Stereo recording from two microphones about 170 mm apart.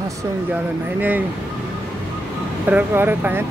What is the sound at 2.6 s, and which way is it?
Speech, 10° right (ahead or behind).